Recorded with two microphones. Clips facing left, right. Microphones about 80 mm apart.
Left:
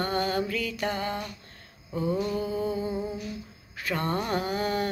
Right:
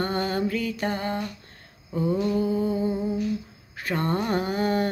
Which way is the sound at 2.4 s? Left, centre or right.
Right.